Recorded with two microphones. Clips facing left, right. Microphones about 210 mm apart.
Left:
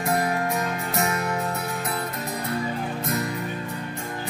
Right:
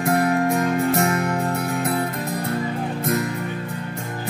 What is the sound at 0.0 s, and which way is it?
Music, 50° right (ahead or behind).